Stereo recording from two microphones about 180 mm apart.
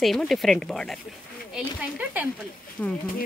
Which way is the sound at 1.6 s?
5° right (ahead or behind).